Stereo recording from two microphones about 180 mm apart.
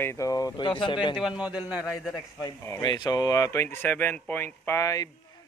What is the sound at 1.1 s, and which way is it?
A man's voice, 5° right (ahead or behind).